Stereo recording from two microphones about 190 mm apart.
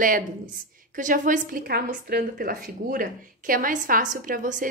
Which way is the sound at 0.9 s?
45° right (ahead or behind).